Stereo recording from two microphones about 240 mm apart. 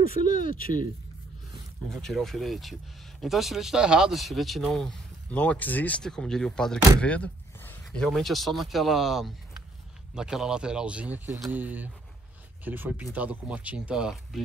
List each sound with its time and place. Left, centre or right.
0.0 s speech: left
1.5 s speech: centre